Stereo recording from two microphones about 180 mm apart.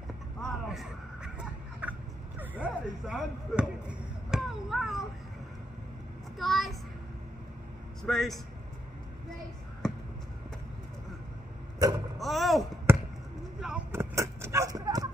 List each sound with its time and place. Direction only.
0.4 s a sound: centre (ahead or behind)
4.3 s chop: centre (ahead or behind)
6.3 s a child's voice: centre (ahead or behind)
8.0 s a man's voice: centre (ahead or behind)
12.2 s speech: centre (ahead or behind)
12.9 s basketball bounce: 15° right (ahead or behind)
13.6 s vehicle: 5° right (ahead or behind)
14.1 s a sound: 15° right (ahead or behind)